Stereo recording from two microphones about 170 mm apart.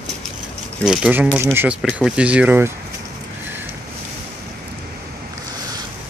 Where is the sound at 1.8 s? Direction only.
5° right (ahead or behind).